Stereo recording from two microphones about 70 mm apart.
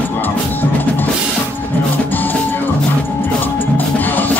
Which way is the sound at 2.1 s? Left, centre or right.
Left.